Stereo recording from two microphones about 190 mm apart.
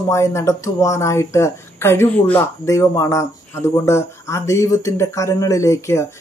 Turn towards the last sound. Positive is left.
turn(degrees=15)  # may be behind; listen again after turning